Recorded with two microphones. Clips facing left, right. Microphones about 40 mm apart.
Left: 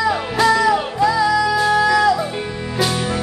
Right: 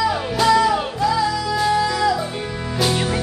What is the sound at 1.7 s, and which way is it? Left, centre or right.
Music, left.